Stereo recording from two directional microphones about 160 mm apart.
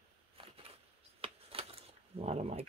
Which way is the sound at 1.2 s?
35° right (ahead or behind).